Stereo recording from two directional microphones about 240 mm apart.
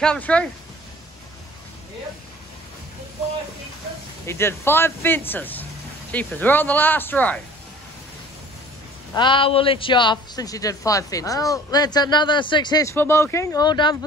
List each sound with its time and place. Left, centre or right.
0.0 s speech: centre
4.3 s a man's voice: centre
9.1 s a man's voice: centre